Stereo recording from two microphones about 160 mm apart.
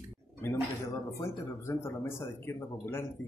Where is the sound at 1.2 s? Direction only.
15° left (ahead or behind).